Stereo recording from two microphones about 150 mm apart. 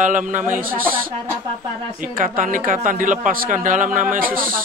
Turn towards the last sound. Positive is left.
turn(degrees=-70)  # may be behind; listen again after turning